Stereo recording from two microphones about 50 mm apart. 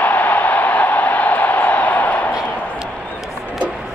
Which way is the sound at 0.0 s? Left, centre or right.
Left.